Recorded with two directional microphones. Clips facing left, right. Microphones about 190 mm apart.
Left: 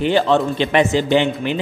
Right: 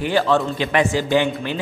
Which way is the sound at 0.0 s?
20° left (ahead or behind).